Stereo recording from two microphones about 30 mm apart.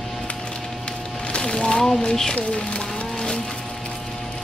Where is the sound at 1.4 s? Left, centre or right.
Left.